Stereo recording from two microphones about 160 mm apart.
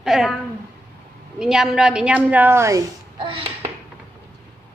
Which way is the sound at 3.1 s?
30° right (ahead or behind).